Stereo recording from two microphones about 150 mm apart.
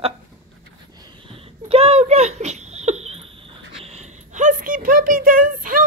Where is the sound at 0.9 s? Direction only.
30° right (ahead or behind).